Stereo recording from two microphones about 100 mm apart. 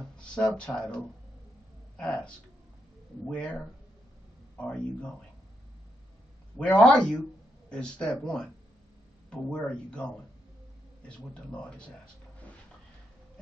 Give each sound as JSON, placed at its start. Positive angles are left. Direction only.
{"t": 0.2, "sound": "speech", "side_deg": 10}
{"t": 4.6, "sound": "speech", "side_deg": 10}
{"t": 6.6, "sound": "speech", "side_deg": 10}